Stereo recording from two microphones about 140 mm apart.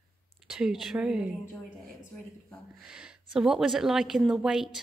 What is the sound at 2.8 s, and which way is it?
A woman's voice, 5° right (ahead or behind).